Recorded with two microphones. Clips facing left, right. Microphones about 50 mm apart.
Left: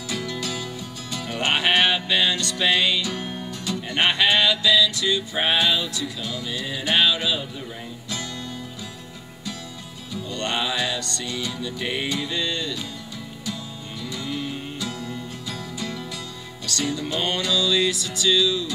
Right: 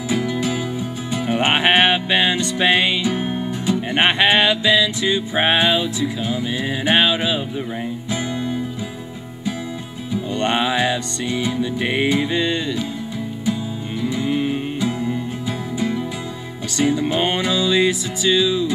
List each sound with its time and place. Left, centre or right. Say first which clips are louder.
0.1 s music: right 8 dB; right
10.1 s music: right 7 dB; right
14.0 s music: right 9 dB; right
16.7 s music: right 8 dB; right